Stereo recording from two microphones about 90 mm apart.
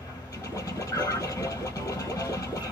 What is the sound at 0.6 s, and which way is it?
Vehicle, 35° left (ahead or behind).